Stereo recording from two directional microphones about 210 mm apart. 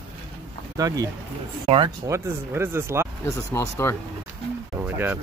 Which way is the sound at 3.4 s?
15° left (ahead or behind).